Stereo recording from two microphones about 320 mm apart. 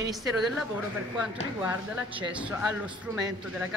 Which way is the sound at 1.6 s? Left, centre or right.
Centre.